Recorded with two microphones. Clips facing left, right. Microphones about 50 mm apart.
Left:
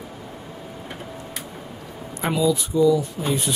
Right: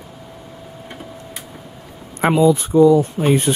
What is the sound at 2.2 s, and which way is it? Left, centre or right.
Speech, right.